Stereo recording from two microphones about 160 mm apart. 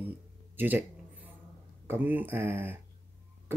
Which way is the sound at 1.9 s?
10° right (ahead or behind).